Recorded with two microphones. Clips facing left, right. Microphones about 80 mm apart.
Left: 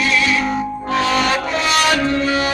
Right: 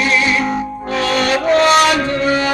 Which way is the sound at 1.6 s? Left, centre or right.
Right.